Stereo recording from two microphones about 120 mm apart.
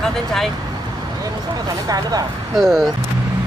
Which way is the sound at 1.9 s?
30° right (ahead or behind).